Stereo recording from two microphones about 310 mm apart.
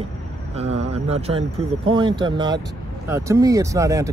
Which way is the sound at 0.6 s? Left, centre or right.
Centre.